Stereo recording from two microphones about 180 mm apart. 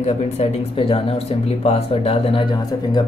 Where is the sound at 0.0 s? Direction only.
35° left (ahead or behind).